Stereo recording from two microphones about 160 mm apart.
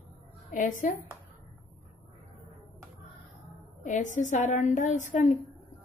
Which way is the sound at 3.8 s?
50° left (ahead or behind).